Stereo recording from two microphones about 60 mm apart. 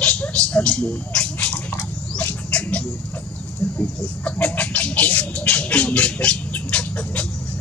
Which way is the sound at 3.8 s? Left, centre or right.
Left.